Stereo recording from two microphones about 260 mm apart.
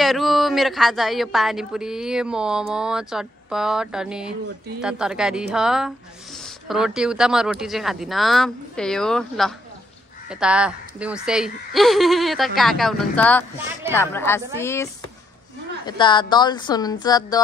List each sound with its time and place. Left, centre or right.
0.0 s a woman's voice: centre